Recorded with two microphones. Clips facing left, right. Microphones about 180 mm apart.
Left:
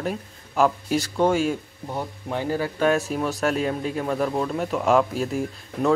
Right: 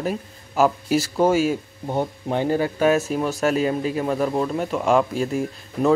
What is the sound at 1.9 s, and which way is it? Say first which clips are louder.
Speech: right 6 dB; 25° right (ahead or behind).